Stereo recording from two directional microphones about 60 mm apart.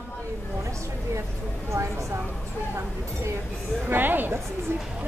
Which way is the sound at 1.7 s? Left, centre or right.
Right.